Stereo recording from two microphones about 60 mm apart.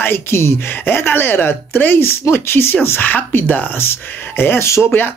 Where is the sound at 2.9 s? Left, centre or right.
Left.